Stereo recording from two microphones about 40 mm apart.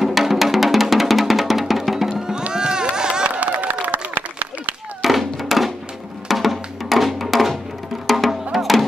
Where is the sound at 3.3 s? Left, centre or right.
Right.